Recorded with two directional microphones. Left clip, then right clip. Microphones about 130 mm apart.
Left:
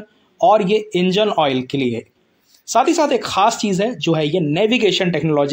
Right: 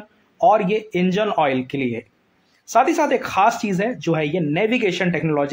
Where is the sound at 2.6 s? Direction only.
30° left (ahead or behind).